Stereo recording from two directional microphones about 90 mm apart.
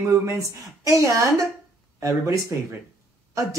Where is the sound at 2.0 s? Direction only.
35° right (ahead or behind).